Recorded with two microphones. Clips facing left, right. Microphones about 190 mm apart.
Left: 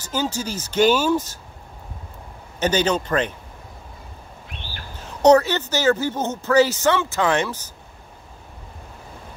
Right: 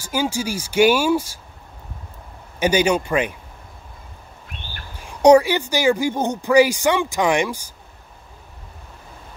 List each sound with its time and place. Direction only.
0.0 s speech: 10° right (ahead or behind)
2.6 s speech: 10° right (ahead or behind)
4.9 s speech: 10° right (ahead or behind)